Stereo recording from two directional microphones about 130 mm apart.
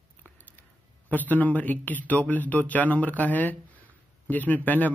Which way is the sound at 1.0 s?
15° left (ahead or behind).